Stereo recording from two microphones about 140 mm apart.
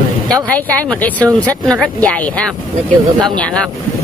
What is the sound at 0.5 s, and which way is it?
Speech, 10° left (ahead or behind).